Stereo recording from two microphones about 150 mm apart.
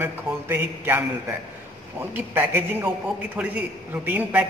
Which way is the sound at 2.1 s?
15° right (ahead or behind).